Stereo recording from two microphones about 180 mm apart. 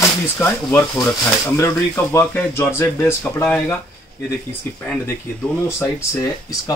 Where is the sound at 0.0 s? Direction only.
10° left (ahead or behind).